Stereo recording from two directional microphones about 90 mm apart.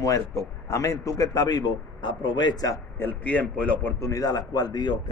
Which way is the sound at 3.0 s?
15° left (ahead or behind).